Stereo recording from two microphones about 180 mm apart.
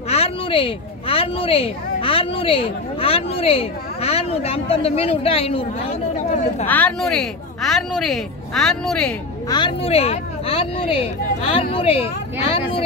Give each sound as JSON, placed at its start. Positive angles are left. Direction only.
{"t": 0.1, "sound": "speech", "side_deg": 30}
{"t": 6.6, "sound": "speech", "side_deg": 10}
{"t": 9.5, "sound": "speech", "side_deg": 25}